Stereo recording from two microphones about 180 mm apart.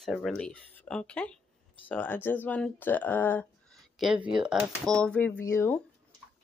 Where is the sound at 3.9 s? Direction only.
Centre (ahead or behind).